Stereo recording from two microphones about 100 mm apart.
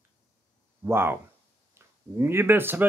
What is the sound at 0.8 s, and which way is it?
Speech, 25° right (ahead or behind).